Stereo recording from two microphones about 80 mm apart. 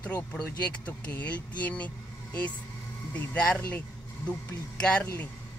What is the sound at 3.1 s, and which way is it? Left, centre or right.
Speech, centre.